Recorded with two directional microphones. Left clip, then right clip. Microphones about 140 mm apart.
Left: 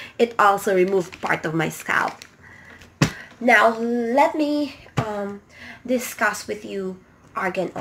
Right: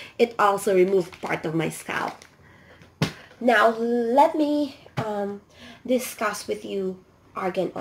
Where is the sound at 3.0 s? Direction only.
15° left (ahead or behind).